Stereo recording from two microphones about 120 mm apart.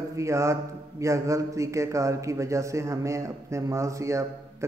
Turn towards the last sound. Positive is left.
turn(degrees=-25)  # may be behind; listen again after turning